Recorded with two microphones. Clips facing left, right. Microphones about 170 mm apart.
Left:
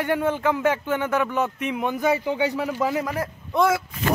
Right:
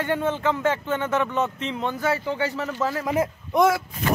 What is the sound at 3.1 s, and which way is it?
Speech, 20° right (ahead or behind).